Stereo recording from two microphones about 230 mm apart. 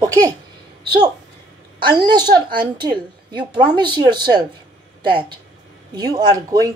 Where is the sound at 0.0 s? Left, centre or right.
Centre.